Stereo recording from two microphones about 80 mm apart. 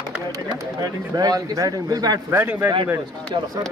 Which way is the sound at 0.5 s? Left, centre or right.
Right.